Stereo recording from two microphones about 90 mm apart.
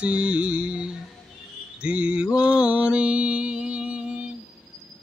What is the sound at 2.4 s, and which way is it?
Mantra, 15° right (ahead or behind).